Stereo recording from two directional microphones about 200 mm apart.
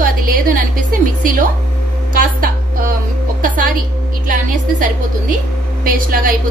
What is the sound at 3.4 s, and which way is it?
A woman's voice, 45° right (ahead or behind).